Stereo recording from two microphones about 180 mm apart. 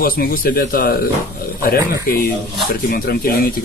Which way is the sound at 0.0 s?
55° left (ahead or behind).